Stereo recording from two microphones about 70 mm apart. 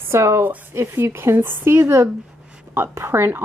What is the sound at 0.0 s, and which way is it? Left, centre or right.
Speech, right.